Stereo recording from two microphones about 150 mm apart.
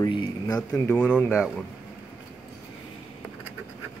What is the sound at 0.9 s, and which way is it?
Speech, 10° left (ahead or behind).